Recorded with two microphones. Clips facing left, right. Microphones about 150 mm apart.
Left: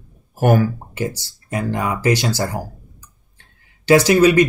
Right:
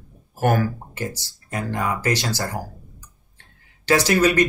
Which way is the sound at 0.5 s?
15° left (ahead or behind).